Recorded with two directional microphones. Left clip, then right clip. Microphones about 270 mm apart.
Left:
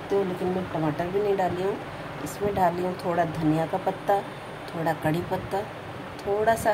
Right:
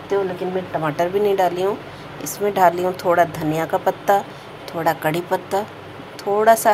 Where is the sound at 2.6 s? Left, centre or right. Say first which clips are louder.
Right 9 dB; centre.